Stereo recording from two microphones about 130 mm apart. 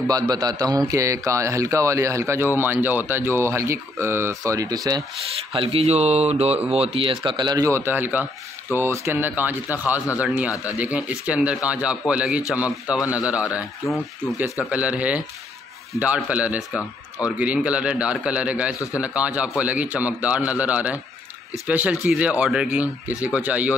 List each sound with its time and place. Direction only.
0.1 s a man's voice: 30° right (ahead or behind)
5.3 s speech: 45° right (ahead or behind)
7.6 s speech: 20° right (ahead or behind)
13.8 s speech: centre (ahead or behind)
14.7 s speech: 10° right (ahead or behind)